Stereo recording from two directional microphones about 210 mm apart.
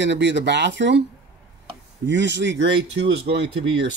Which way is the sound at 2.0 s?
55° right (ahead or behind).